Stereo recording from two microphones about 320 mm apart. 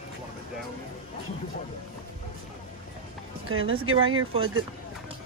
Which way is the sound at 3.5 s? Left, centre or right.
Right.